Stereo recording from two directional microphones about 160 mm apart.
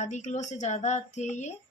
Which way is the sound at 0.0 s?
50° left (ahead or behind).